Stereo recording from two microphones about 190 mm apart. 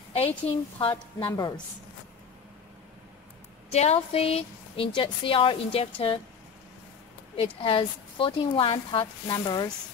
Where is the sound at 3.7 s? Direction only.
35° left (ahead or behind).